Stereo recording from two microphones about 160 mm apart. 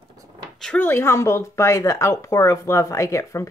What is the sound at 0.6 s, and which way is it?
Speech, 10° left (ahead or behind).